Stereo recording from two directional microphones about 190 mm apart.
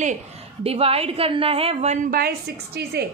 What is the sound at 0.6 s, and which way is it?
A woman's voice, 30° right (ahead or behind).